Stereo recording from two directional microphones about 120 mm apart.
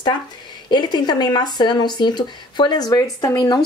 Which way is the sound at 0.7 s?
35° left (ahead or behind).